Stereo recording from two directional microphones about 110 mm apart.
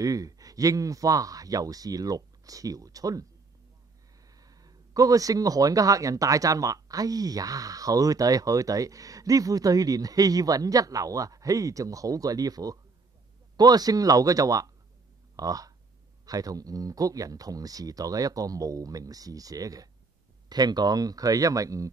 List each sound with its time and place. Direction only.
0.0 s speech: 30° right (ahead or behind)
4.3 s speech: 35° right (ahead or behind)